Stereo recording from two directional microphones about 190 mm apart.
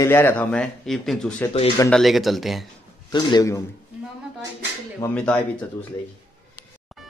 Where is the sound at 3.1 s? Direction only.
20° left (ahead or behind).